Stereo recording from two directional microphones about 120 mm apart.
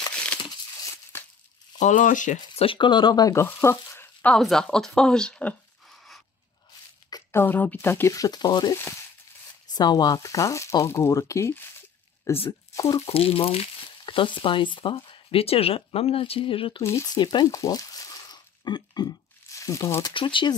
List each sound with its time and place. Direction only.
0.1 s tearing: 10° left (ahead or behind)
1.1 s a sound: 20° left (ahead or behind)
1.8 s speech: 90° left
2.5 s speech: 50° left (ahead or behind); by 4.1 s 20° left (ahead or behind)
4.2 s speech: 5° left (ahead or behind)
5.9 s a sound: centre (ahead or behind)
7.1 s a sound: 30° left (ahead or behind)
7.3 s speech: 15° left (ahead or behind); by 8.7 s 35° left (ahead or behind)
8.7 s speech: 20° left (ahead or behind)
9.7 s speech: 35° left (ahead or behind)
13.0 s speech: 55° left (ahead or behind)
16.8 s speech: 25° left (ahead or behind)
17.2 s a sound: 40° left (ahead or behind)
20.2 s speech: 45° left (ahead or behind)